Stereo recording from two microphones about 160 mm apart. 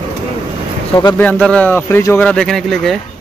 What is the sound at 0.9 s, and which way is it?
Speech, 20° left (ahead or behind).